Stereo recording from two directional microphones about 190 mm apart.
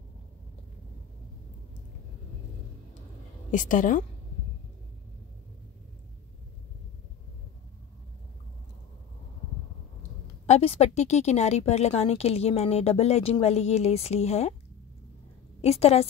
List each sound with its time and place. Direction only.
3.5 s a woman's voice: 45° left (ahead or behind)
10.4 s speech: 35° left (ahead or behind)
15.6 s speech: 35° left (ahead or behind)